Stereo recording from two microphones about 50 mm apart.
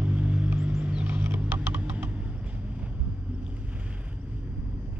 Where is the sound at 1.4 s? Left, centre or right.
Right.